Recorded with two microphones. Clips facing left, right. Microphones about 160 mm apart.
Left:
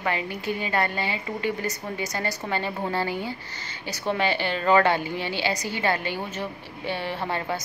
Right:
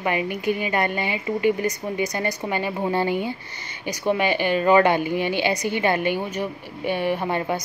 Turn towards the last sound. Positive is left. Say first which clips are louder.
# right 4 dB
turn(degrees=-15)  # may be behind; listen again after turning